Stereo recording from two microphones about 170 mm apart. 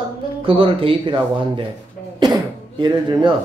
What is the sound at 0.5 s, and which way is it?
Speech, 30° right (ahead or behind).